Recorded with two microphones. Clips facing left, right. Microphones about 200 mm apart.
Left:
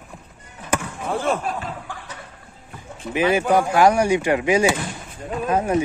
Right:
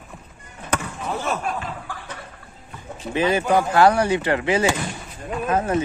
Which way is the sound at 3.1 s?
10° left (ahead or behind).